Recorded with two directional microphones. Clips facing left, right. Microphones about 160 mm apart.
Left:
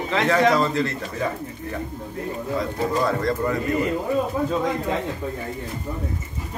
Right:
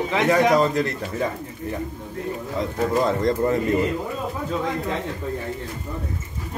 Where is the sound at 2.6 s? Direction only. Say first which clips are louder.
Right 2 dB; 20° right (ahead or behind).